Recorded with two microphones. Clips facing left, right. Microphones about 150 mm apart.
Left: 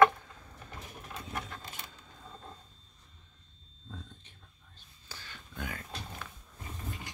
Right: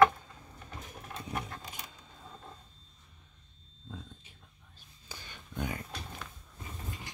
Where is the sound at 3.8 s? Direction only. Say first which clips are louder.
Right 1 dB; 5° right (ahead or behind).